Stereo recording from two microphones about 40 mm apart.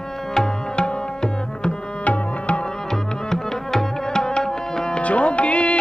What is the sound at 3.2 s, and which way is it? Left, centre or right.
Music, centre.